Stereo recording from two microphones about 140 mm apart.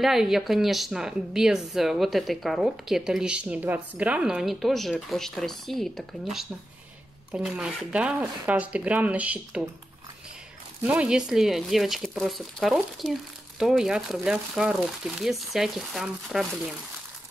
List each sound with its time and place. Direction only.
0.0 s speech: centre (ahead or behind)
10.8 s speech: 10° right (ahead or behind)